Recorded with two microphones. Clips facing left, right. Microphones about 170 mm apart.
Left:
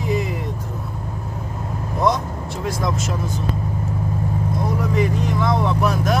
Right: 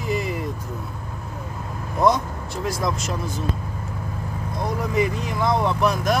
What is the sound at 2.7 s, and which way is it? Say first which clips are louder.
Speech: left 2 dB; centre (ahead or behind).